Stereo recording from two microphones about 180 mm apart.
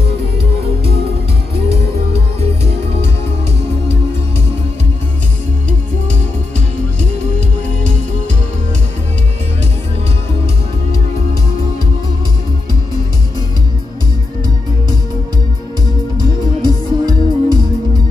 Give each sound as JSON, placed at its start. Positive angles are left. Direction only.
{"t": 16.6, "sound": "music", "side_deg": -25}